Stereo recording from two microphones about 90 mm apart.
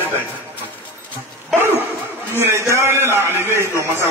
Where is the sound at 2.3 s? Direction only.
30° right (ahead or behind).